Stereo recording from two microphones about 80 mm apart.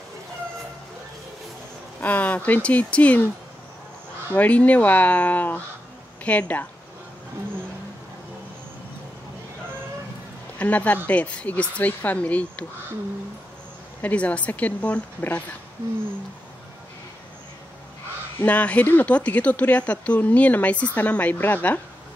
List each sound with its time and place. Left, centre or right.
2.0 s speech: centre
4.3 s speech: centre
10.6 s speech: centre
14.0 s speech: centre
18.4 s speech: centre